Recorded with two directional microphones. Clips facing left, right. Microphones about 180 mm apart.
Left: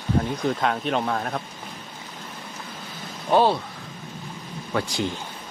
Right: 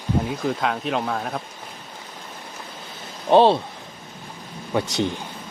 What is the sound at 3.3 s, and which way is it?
Speech, 25° right (ahead or behind).